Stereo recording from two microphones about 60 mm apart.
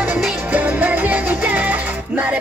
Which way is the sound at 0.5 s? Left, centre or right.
Right.